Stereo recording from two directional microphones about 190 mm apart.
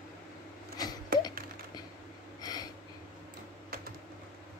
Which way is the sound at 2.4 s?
20° left (ahead or behind).